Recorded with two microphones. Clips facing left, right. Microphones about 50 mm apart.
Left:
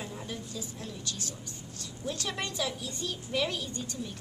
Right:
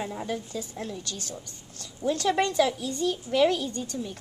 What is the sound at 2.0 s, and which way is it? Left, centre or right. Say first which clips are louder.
A woman's voice: right 11 dB; right.